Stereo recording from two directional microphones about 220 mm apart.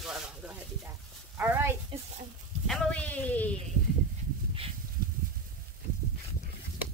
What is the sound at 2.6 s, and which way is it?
Speech, centre (ahead or behind).